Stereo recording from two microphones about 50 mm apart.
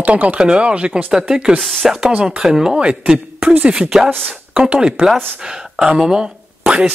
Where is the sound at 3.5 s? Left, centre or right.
Right; by 5.8 s centre.